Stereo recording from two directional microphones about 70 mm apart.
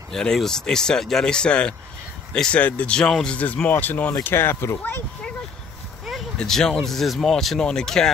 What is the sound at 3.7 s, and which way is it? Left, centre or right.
Speech, left.